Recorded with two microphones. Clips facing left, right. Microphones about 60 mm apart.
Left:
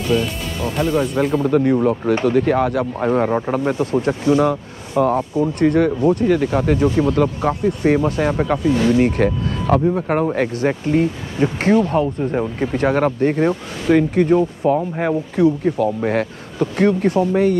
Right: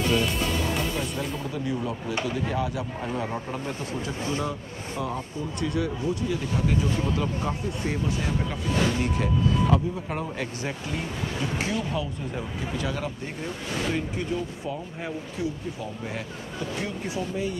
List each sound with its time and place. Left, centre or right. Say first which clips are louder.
0.7 s speech: left 11 dB; left